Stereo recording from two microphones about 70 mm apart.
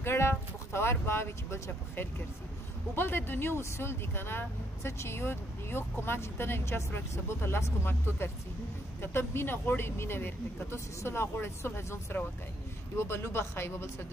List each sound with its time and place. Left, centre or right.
0.0 s speech: left